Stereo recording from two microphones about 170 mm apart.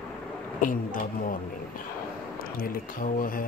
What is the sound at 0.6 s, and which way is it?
Speech, 55° left (ahead or behind).